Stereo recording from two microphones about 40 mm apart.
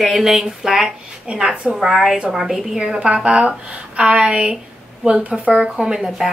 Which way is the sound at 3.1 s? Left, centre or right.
Right.